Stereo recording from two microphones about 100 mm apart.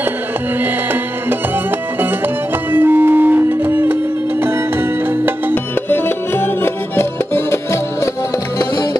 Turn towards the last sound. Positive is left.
turn(degrees=25)  # may be behind; listen again after turning